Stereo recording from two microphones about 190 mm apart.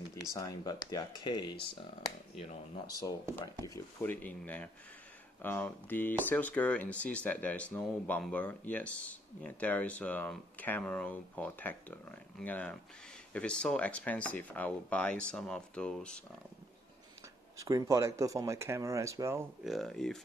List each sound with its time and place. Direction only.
0.1 s speech: 15° left (ahead or behind)
2.9 s speech: 20° left (ahead or behind)
17.6 s speech: 15° right (ahead or behind)
19.6 s speech: centre (ahead or behind)